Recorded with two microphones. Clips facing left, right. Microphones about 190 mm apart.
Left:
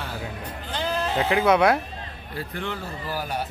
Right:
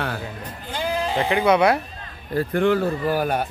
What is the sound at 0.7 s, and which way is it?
Sheep, 10° right (ahead or behind).